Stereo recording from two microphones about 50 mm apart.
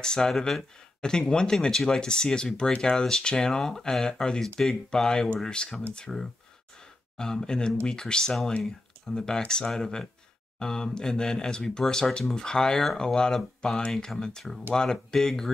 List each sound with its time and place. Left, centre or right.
0.0 s speech: centre